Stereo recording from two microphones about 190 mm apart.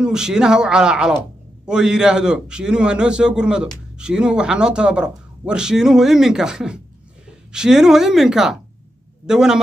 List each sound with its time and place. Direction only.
0.0 s a man's voice: 5° right (ahead or behind)